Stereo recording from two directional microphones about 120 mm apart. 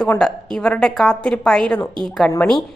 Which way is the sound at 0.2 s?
5° left (ahead or behind).